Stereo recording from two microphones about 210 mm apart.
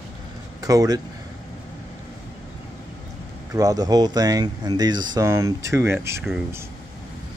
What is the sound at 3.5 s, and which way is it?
Speech, 15° right (ahead or behind).